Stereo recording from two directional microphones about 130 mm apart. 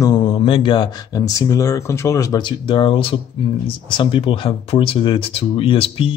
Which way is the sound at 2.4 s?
40° left (ahead or behind).